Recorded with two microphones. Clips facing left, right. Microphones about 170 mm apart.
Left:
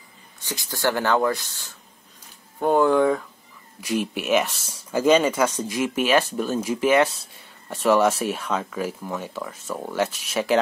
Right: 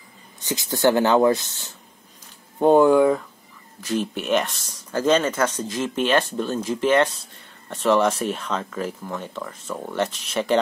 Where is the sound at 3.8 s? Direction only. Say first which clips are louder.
Even; 10° left (ahead or behind).